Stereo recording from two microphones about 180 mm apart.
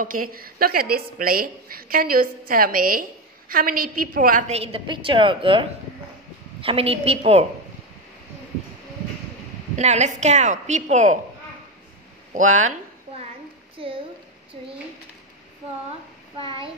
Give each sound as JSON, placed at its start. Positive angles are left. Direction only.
{"t": 0.0, "sound": "a woman's voice", "side_deg": -50}
{"t": 9.8, "sound": "a woman's voice", "side_deg": -40}
{"t": 12.4, "sound": "a woman's voice", "side_deg": -45}
{"t": 13.7, "sound": "a sound", "side_deg": -30}
{"t": 16.3, "sound": "a child's voice", "side_deg": -30}